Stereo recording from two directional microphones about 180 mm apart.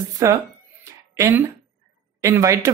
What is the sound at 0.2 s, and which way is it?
Speech, 20° right (ahead or behind).